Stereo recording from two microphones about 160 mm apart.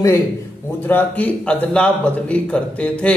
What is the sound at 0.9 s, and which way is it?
A man's voice, 10° left (ahead or behind).